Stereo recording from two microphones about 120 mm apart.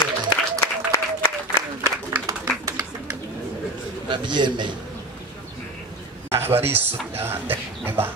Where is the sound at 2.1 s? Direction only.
25° right (ahead or behind).